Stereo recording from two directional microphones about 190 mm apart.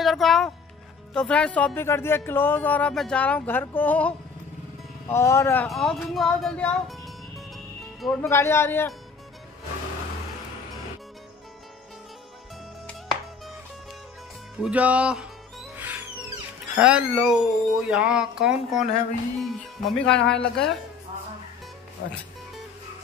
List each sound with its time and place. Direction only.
0.0 s music: centre (ahead or behind)
1.1 s speech: 5° left (ahead or behind)
5.7 s speech: centre (ahead or behind)
8.0 s speech: 5° left (ahead or behind)
8.3 s speech: 15° left (ahead or behind)
14.6 s speech: 5° right (ahead or behind)
15.8 s music: 10° right (ahead or behind)
16.7 s speech: 5° right (ahead or behind)
22.0 s speech: 60° left (ahead or behind)